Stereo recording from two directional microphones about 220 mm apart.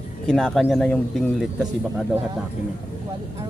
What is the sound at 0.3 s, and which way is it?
Speech, 5° left (ahead or behind).